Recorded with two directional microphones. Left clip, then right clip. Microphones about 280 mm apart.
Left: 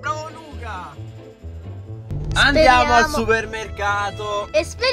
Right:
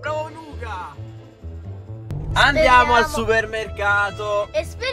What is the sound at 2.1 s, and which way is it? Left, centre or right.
A man's voice, centre.